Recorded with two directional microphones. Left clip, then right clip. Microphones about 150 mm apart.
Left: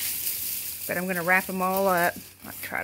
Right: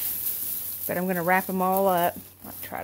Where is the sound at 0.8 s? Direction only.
20° right (ahead or behind).